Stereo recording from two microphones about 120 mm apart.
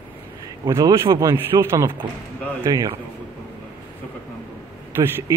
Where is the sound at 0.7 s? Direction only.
30° right (ahead or behind).